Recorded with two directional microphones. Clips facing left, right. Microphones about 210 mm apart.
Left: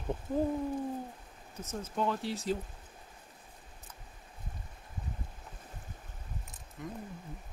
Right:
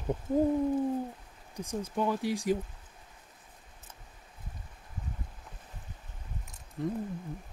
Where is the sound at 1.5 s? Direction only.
15° right (ahead or behind).